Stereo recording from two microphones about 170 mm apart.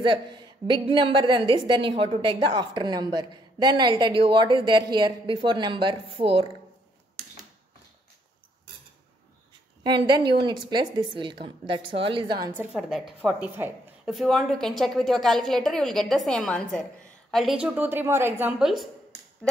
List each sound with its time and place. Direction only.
0.0 s a woman's voice: 30° right (ahead or behind)
9.8 s a woman's voice: 25° right (ahead or behind)
12.5 s a woman's voice: 5° right (ahead or behind)